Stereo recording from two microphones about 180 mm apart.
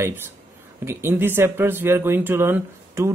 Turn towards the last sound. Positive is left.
turn(degrees=-15)  # may be behind; listen again after turning